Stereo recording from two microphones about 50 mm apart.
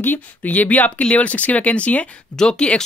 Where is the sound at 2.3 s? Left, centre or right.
Centre.